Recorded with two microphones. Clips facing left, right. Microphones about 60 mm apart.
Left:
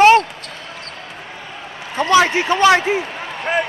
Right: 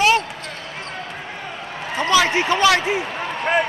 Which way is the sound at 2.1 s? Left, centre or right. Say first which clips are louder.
Left 3 dB; left.